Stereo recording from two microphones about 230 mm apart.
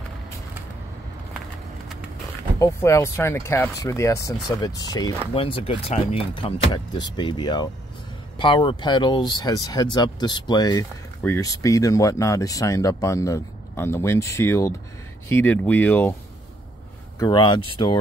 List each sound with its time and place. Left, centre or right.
2.6 s speech: centre
17.2 s speech: centre